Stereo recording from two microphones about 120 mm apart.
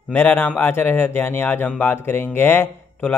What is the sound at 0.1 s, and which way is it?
A man's voice, 15° left (ahead or behind).